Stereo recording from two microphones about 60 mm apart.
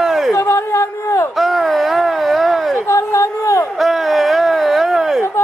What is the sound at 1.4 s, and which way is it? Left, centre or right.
Wail, centre.